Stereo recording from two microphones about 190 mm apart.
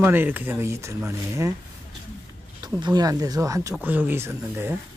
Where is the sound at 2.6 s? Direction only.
20° right (ahead or behind).